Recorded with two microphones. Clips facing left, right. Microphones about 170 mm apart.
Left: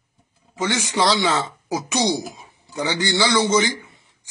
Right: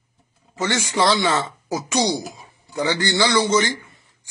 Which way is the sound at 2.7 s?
20° left (ahead or behind).